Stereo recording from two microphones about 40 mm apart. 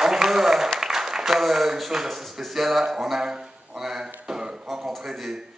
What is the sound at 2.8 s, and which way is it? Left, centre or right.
Speech, centre.